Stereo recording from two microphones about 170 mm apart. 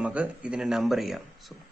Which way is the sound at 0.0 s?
10° right (ahead or behind).